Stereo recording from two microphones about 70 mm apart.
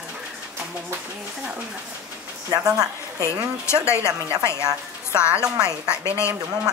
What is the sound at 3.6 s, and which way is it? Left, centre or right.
Speech, left.